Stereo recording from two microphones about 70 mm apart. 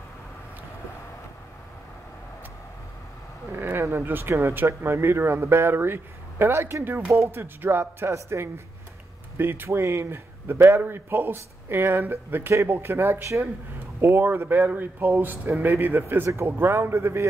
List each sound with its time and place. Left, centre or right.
3.5 s a man's voice: right